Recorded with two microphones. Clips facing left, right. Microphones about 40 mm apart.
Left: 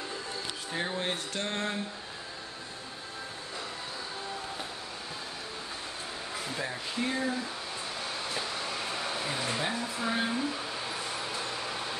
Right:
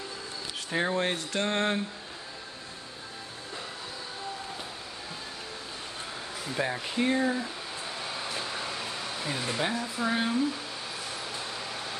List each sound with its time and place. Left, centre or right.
0.7 s speech: right
6.5 s speech: right
8.0 s a sound: centre
9.7 s speech: centre
10.3 s a sound: centre
11.5 s vehicle: centre